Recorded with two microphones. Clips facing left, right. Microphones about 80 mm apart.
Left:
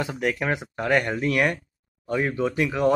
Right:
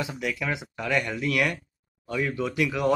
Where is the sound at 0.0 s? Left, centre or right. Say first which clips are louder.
Left 4 dB; left.